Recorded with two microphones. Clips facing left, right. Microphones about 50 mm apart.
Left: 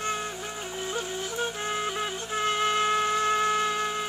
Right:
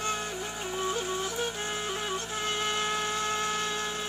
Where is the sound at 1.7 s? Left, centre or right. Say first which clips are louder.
Left 3 dB; left.